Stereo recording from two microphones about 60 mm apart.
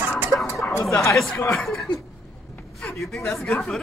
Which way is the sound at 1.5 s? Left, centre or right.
Centre.